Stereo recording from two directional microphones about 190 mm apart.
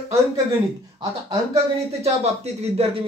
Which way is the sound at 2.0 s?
35° right (ahead or behind).